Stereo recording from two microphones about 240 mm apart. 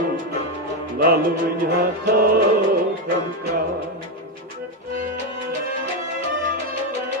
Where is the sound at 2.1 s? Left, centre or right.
Right.